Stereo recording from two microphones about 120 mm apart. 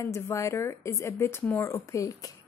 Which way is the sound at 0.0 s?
25° left (ahead or behind).